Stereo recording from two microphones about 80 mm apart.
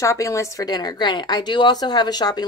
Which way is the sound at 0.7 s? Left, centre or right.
Left.